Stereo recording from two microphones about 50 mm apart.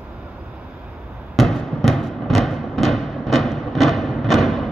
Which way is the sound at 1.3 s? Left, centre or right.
Centre.